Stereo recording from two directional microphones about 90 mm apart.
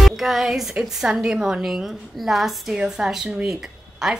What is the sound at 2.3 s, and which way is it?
A woman's voice, 5° right (ahead or behind).